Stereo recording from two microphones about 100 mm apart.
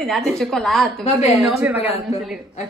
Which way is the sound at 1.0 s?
90° left.